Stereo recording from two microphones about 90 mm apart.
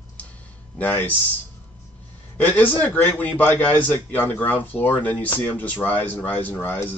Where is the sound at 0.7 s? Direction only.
20° left (ahead or behind).